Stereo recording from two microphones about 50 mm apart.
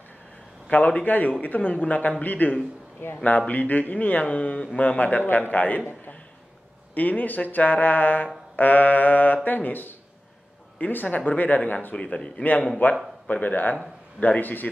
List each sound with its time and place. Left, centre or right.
0.7 s a man's voice: left
6.9 s speech: left
12.1 s a man's voice: centre
12.4 s speech: left